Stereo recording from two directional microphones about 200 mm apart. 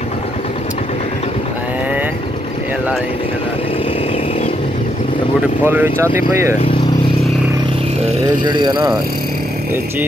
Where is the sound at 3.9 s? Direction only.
30° left (ahead or behind).